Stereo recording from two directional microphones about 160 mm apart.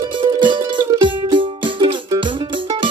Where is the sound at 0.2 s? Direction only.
30° right (ahead or behind).